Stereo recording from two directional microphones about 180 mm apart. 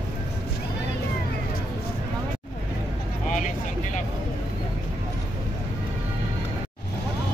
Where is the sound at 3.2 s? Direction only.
45° left (ahead or behind).